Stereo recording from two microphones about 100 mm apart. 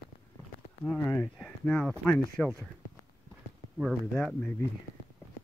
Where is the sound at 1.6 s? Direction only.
15° left (ahead or behind).